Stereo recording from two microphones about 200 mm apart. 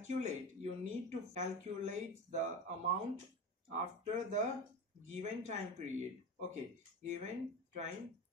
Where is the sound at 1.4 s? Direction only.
35° right (ahead or behind).